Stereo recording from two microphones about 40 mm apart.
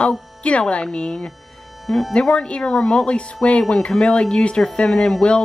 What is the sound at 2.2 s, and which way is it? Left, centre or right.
Speech, left.